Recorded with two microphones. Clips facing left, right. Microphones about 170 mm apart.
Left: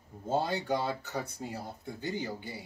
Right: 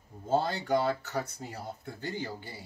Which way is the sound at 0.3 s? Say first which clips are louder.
Right 2 dB; 15° left (ahead or behind).